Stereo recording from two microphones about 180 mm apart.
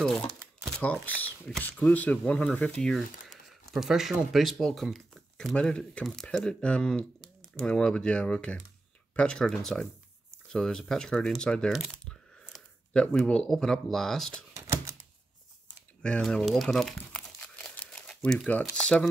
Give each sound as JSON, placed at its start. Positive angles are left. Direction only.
{"t": 0.7, "sound": "speech", "side_deg": 5}
{"t": 14.5, "sound": "typewriter", "side_deg": -15}
{"t": 16.0, "sound": "speech", "side_deg": 5}